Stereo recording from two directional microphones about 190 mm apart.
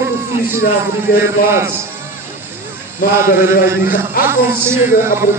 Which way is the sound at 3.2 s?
15° right (ahead or behind).